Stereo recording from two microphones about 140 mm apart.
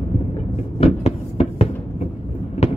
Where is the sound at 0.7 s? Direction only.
45° left (ahead or behind).